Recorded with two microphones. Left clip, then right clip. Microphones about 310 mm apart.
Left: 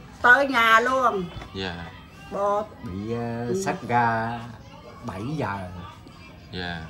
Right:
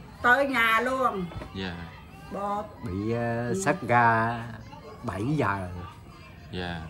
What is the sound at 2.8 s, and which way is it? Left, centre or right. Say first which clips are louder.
Speech: right 1 dB; right.